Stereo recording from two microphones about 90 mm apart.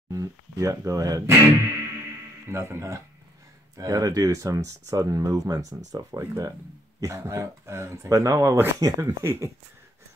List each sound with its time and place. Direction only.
0.1 s speech: 40° right (ahead or behind)
1.2 s speech: 30° right (ahead or behind)
2.5 s speech: 30° right (ahead or behind)